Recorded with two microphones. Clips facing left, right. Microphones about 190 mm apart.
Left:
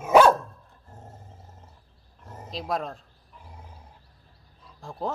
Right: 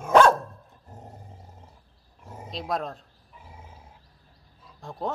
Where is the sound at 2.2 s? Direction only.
10° right (ahead or behind).